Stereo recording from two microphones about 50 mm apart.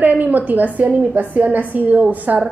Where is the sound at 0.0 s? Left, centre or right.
Right.